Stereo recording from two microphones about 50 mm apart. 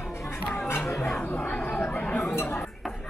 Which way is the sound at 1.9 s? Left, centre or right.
Left.